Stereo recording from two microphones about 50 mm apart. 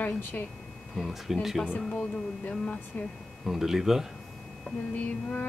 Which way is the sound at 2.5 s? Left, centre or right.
Left.